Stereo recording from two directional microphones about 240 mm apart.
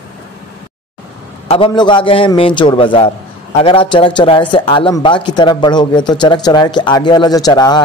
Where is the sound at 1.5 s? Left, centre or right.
Left.